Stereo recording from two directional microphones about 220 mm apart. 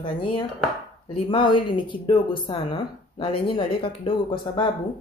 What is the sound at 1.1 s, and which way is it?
Speech, 25° left (ahead or behind).